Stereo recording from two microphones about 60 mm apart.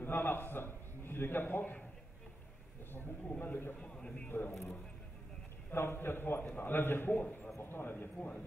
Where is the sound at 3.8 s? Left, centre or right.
Centre.